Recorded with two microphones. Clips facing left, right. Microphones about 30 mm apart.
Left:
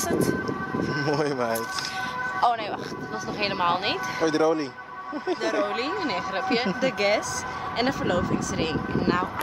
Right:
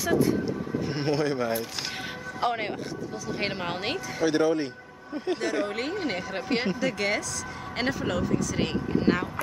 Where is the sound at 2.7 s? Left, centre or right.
Centre.